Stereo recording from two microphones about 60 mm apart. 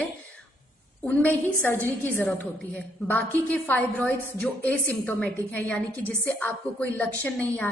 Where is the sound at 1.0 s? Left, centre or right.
Left.